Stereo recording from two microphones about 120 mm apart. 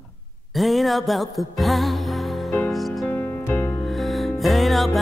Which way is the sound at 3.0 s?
20° left (ahead or behind).